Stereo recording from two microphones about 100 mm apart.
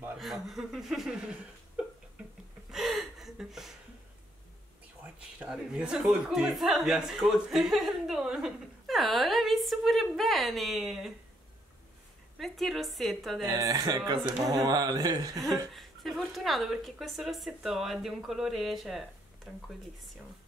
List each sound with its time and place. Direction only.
0.2 s speech: centre (ahead or behind)
2.7 s gasp: centre (ahead or behind)
5.5 s speech: 10° right (ahead or behind)
12.4 s speech: centre (ahead or behind)
13.5 s speech: 35° right (ahead or behind)
15.7 s speech: centre (ahead or behind)